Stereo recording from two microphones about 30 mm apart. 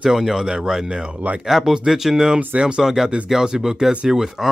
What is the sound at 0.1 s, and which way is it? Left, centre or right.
Speech, centre.